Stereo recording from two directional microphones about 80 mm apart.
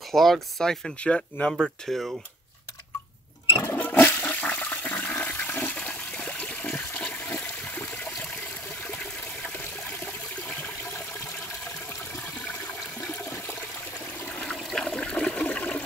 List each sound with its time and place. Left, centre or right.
0.1 s speech: centre
3.7 s toilet flush: left
14.3 s a sound: centre
14.6 s toilet flush: centre